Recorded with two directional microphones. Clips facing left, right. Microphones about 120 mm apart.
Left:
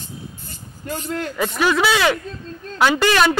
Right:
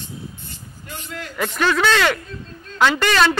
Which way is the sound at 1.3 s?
5° left (ahead or behind).